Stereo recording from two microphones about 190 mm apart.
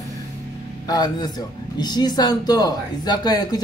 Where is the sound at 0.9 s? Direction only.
20° left (ahead or behind).